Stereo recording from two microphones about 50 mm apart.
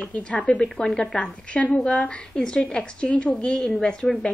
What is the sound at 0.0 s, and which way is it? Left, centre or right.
A woman's voice, left.